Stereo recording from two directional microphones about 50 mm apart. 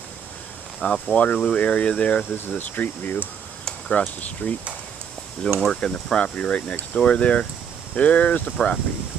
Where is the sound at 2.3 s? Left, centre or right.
Left.